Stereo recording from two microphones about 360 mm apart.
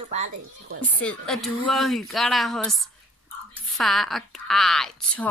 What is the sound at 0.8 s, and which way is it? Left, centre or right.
A woman's voice, centre.